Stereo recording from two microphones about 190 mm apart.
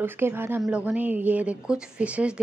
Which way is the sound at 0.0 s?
10° right (ahead or behind).